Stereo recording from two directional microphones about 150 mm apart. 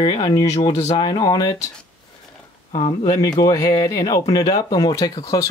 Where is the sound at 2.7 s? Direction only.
30° left (ahead or behind).